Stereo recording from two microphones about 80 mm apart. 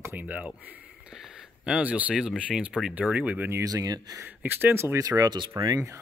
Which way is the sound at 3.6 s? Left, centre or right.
Right.